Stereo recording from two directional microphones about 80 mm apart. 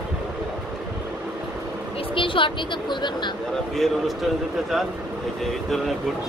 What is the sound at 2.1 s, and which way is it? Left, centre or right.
Speech, left.